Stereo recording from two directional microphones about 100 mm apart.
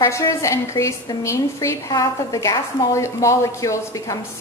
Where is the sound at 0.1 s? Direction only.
30° left (ahead or behind).